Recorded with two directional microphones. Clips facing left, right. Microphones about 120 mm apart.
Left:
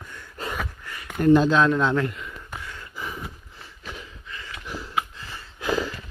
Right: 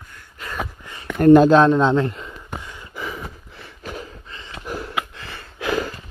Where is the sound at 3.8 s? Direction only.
45° right (ahead or behind).